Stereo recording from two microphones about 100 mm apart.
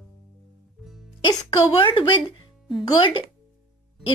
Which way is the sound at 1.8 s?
55° left (ahead or behind).